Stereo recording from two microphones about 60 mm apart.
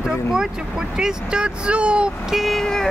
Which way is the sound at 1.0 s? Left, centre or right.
Centre.